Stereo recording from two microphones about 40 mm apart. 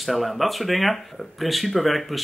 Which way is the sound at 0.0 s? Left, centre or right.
Centre.